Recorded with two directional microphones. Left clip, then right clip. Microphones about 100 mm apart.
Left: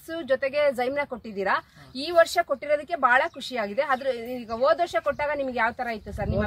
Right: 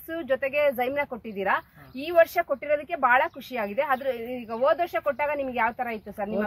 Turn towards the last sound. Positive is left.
turn(degrees=-10)  # may be behind; listen again after turning